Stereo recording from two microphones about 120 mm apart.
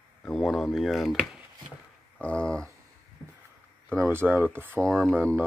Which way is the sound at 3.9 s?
20° right (ahead or behind).